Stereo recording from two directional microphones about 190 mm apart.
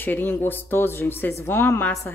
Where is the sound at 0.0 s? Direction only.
10° left (ahead or behind).